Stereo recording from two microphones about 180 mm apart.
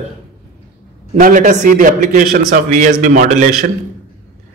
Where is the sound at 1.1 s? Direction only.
45° right (ahead or behind).